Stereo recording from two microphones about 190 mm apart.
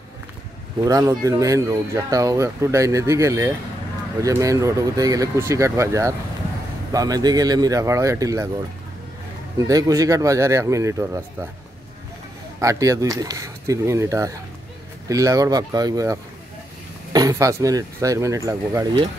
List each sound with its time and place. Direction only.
0.7 s speech: 20° right (ahead or behind)
9.6 s speech: 20° right (ahead or behind)
12.5 s speech: 15° right (ahead or behind)